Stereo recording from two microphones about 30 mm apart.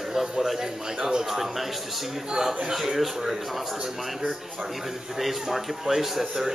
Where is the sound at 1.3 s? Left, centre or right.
Centre.